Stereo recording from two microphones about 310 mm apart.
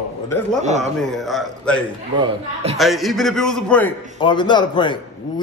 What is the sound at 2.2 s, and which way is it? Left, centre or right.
Speech, centre.